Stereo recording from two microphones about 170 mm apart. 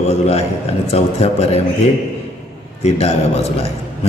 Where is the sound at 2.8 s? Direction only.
35° left (ahead or behind).